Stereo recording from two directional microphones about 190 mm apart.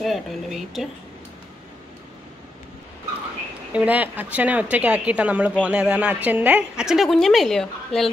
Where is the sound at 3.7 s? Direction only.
5° right (ahead or behind).